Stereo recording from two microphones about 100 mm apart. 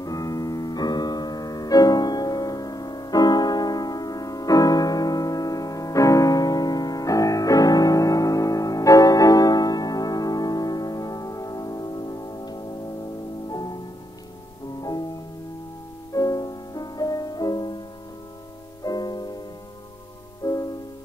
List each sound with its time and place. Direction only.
0.0 s music: 35° left (ahead or behind)
14.8 s music: 40° left (ahead or behind)
16.1 s music: 35° left (ahead or behind)
18.9 s music: 40° left (ahead or behind)
20.4 s music: 35° left (ahead or behind)